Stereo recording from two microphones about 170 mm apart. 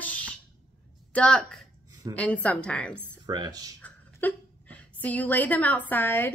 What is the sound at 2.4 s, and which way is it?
Speech, 5° left (ahead or behind).